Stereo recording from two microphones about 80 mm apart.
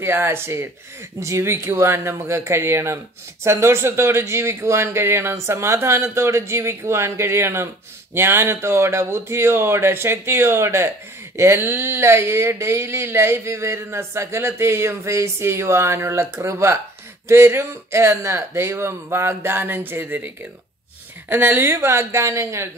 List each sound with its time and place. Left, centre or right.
0.0 s speech: right
21.3 s speech: right